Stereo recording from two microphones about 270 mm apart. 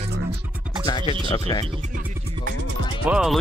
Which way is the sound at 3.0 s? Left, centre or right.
Centre.